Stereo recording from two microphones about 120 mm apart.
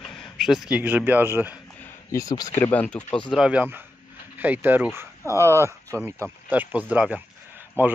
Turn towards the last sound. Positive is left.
turn(degrees=-15)  # may be behind; listen again after turning